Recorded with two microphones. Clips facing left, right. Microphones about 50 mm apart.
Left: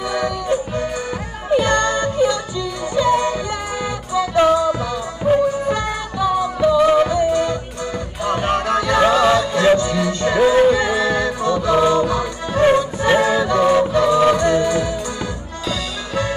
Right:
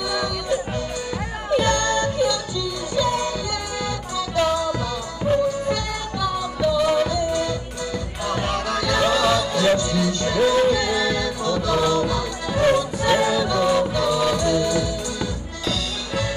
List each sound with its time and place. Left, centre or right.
0.1 s music: left
1.5 s music: left